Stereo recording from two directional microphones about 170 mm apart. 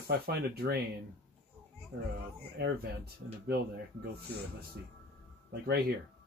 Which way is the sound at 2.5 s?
70° right (ahead or behind).